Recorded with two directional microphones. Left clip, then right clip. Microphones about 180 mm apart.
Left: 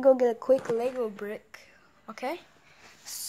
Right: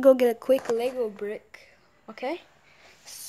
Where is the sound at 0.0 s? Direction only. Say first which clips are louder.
Right 3 dB; 15° right (ahead or behind).